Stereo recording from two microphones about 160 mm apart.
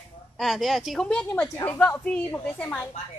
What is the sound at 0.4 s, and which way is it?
Speech, centre (ahead or behind).